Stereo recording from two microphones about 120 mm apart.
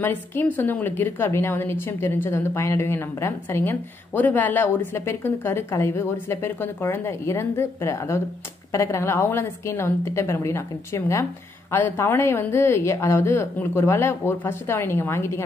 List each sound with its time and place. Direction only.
0.0 s a woman's voice: 15° left (ahead or behind)